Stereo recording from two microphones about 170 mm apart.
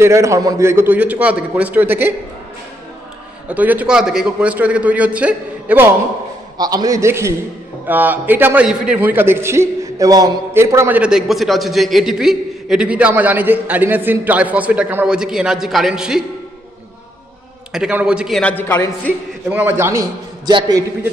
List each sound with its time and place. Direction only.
0.0 s a man's voice: 15° right (ahead or behind)
3.4 s a man's voice: 10° right (ahead or behind)
6.6 s a man's voice: 20° right (ahead or behind); by 16.3 s 5° right (ahead or behind)
17.7 s a man's voice: 5° right (ahead or behind)
18.4 s a man's voice: 10° left (ahead or behind)
19.5 s a man's voice: 15° right (ahead or behind)